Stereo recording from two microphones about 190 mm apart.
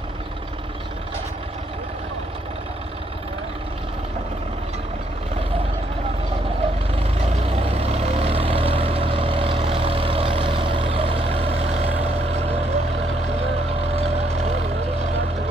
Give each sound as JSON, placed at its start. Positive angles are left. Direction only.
{"t": 6.6, "sound": "vehicle", "side_deg": -30}